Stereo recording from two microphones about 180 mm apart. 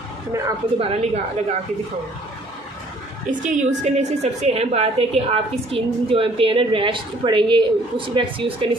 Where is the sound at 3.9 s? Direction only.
40° right (ahead or behind).